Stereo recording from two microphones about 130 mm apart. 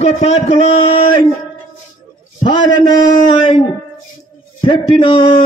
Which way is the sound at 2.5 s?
35° left (ahead or behind).